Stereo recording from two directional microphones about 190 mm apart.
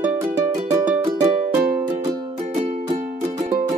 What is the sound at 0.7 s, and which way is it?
Music, 15° right (ahead or behind).